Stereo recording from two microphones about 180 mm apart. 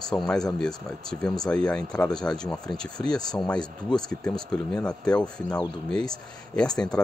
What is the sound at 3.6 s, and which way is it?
Speech, 25° left (ahead or behind).